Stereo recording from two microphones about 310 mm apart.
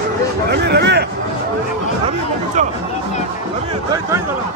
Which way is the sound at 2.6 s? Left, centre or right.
Right.